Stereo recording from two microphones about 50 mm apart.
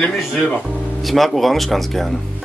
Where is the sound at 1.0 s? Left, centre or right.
Centre.